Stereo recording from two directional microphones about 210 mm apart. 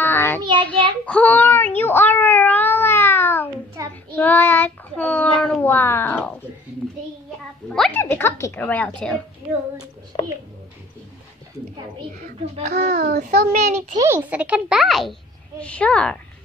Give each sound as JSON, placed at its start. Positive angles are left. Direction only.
{"t": 0.0, "sound": "child singing", "side_deg": 10}
{"t": 0.4, "sound": "child singing", "side_deg": -20}
{"t": 1.0, "sound": "child singing", "side_deg": 5}
{"t": 3.8, "sound": "child singing", "side_deg": -15}
{"t": 4.1, "sound": "child singing", "side_deg": 10}
{"t": 7.7, "sound": "a sound", "side_deg": 5}
{"t": 8.0, "sound": "speech", "side_deg": 10}
{"t": 12.5, "sound": "a child's voice", "side_deg": -35}
{"t": 12.9, "sound": "child singing", "side_deg": -50}
{"t": 13.3, "sound": "a child's voice", "side_deg": -30}
{"t": 13.9, "sound": "a child's voice", "side_deg": -10}